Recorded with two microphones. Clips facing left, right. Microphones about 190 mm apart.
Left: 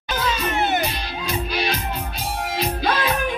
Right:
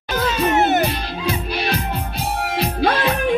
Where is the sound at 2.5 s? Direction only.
60° right (ahead or behind).